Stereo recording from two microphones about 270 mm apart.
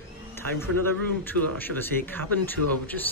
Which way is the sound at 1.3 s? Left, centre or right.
Right.